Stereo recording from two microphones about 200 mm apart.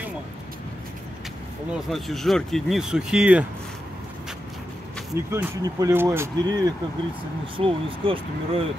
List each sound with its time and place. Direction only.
1.7 s speech: centre (ahead or behind)
5.1 s speech: 15° right (ahead or behind)